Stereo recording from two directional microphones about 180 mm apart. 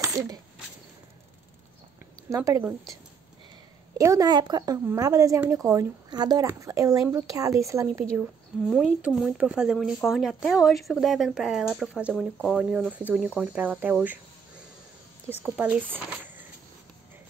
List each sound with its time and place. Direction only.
2.2 s speech: 15° right (ahead or behind)
4.0 s speech: 20° right (ahead or behind)
8.2 s speech: centre (ahead or behind)
15.4 s speech: 5° right (ahead or behind)